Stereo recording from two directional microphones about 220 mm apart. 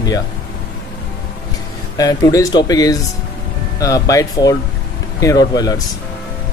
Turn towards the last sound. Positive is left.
turn(degrees=15)  # may be behind; listen again after turning